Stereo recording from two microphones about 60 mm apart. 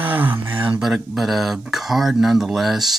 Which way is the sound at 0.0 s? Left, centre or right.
Right.